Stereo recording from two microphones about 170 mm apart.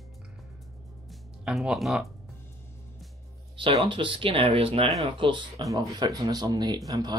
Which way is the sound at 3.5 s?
30° right (ahead or behind).